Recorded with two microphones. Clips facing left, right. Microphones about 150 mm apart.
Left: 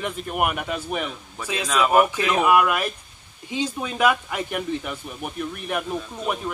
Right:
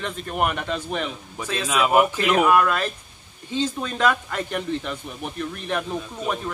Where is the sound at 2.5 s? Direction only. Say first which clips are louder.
Even; 10° left (ahead or behind).